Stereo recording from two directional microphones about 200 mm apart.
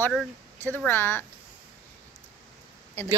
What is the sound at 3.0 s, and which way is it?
Speech, 15° left (ahead or behind).